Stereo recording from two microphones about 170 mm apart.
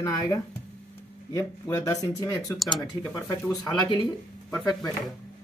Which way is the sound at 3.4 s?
20° left (ahead or behind).